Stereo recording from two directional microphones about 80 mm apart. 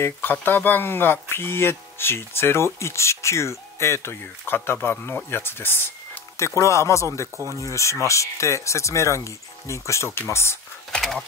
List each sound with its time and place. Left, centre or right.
0.0 s speech: left
10.9 s speech: centre